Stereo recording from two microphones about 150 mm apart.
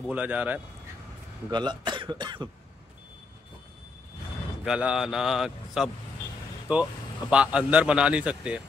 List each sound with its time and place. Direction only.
0.0 s a man's voice: 10° right (ahead or behind)
1.5 s speech: 30° right (ahead or behind)
4.6 s a man's voice: 5° right (ahead or behind)